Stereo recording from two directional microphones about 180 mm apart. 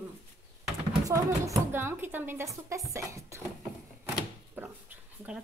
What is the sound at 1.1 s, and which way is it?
A woman's voice, 15° right (ahead or behind).